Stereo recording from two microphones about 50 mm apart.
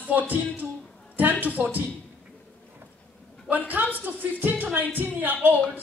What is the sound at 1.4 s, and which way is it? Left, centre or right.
Speech, right.